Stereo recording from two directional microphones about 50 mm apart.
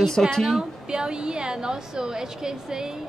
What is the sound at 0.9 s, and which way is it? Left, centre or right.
A woman's voice, centre.